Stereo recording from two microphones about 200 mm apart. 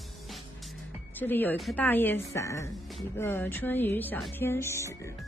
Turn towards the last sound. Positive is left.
turn(degrees=10)  # may be behind; listen again after turning